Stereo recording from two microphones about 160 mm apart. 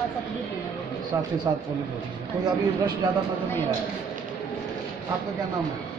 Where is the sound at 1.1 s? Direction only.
20° right (ahead or behind).